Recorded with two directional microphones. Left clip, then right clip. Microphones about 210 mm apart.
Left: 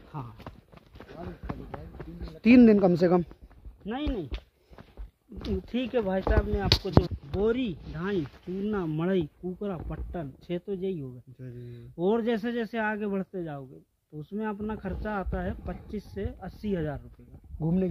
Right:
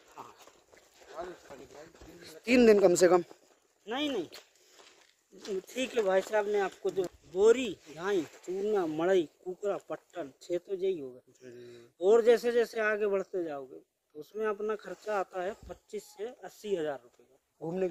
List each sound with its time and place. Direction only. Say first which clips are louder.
0.1 s a sound: left 6 dB; 40° left (ahead or behind)
1.2 s clip-clop: right 2 dB; 20° right (ahead or behind)
2.4 s speech: left 2 dB; 15° right (ahead or behind)
3.8 s speech: even; 60° right (ahead or behind)
5.8 s speech: right 1 dB; 60° right (ahead or behind)
7.3 s speech: right 3 dB; 40° right (ahead or behind)
8.0 s speech: even; centre (ahead or behind)
11.4 s speech: left 4 dB; 30° right (ahead or behind)
11.7 s speech: right 3 dB; centre (ahead or behind)
15.7 s speech: left 3 dB; 15° left (ahead or behind)
17.6 s speech: left 3 dB; 10° right (ahead or behind)